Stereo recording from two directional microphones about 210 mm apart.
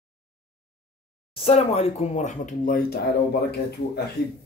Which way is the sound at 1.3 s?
30° left (ahead or behind).